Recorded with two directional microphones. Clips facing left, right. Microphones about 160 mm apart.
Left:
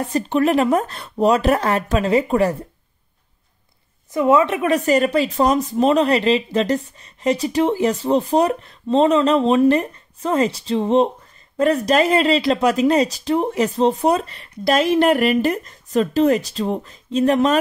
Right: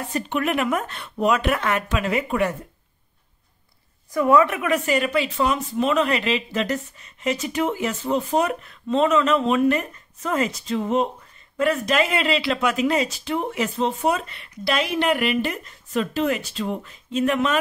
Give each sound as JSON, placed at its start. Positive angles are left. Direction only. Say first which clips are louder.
{"t": 0.1, "sound": "speech", "louder": "left 6 dB", "side_deg": 35}
{"t": 4.1, "sound": "speech", "louder": "left 2 dB", "side_deg": 20}